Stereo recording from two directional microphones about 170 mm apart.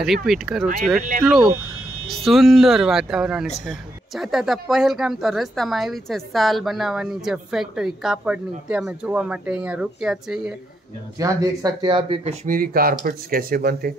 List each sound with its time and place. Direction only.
0.0 s speech: centre (ahead or behind)
11.1 s speech: 20° right (ahead or behind)
12.4 s speech: 55° right (ahead or behind)